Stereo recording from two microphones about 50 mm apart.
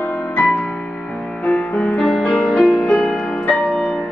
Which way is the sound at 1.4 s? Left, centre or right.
Left.